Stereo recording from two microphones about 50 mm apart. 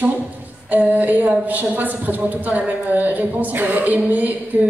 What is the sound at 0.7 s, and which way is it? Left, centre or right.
A woman's voice, right.